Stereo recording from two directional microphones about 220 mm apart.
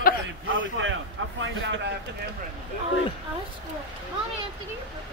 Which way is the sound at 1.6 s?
55° right (ahead or behind).